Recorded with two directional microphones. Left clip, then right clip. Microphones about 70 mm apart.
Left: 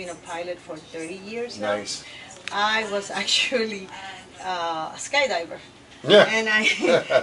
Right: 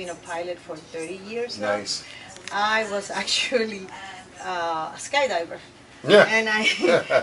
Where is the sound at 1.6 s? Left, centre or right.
Centre.